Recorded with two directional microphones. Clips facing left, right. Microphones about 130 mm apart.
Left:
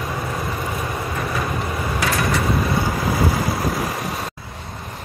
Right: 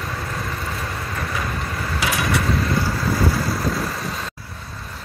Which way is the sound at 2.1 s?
Centre (ahead or behind).